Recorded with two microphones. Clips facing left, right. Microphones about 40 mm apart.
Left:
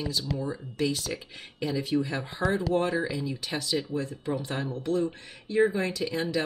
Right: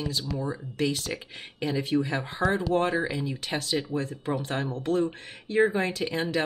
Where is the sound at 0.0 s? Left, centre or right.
Right.